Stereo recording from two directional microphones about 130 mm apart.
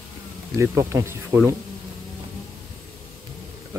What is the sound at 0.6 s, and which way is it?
Speech, 20° right (ahead or behind).